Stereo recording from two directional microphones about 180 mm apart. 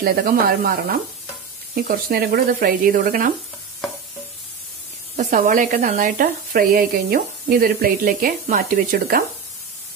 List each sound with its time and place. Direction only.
0.0 s speech: 55° right (ahead or behind)
5.1 s speech: 45° right (ahead or behind)